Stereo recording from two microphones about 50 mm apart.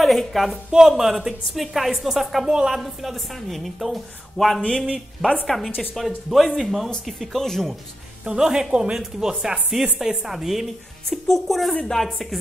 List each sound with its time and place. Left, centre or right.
0.0 s a woman's voice: centre
0.7 s a woman's voice: centre
2.8 s a woman's voice: centre
8.3 s speech: centre
11.1 s a woman's voice: centre